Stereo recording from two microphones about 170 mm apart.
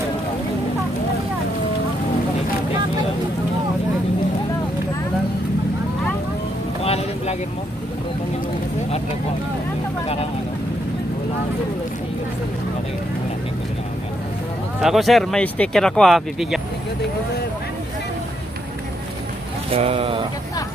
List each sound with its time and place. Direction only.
6.8 s boat: 35° left (ahead or behind)
14.8 s speech: centre (ahead or behind)
19.7 s speech: 35° right (ahead or behind)